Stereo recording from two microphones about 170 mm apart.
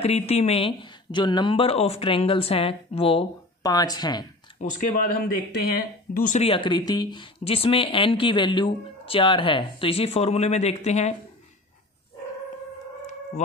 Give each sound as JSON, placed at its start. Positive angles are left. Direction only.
{"t": 0.0, "sound": "speech", "side_deg": 40}
{"t": 4.6, "sound": "speech", "side_deg": 45}